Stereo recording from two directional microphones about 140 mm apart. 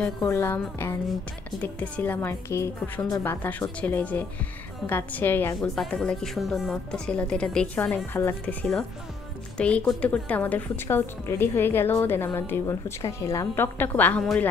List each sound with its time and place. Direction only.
0.2 s a woman's voice: 15° left (ahead or behind)
5.8 s a woman's voice: 5° left (ahead or behind)
9.6 s a woman's voice: 10° left (ahead or behind)